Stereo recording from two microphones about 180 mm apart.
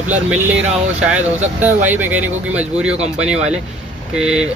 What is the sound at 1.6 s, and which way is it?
Speech, 10° right (ahead or behind).